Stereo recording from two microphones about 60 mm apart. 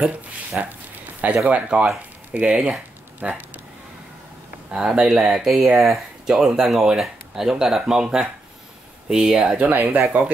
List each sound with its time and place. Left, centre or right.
0.5 s speech: centre
3.2 s a sound: right
4.7 s speech: centre
9.9 s speech: right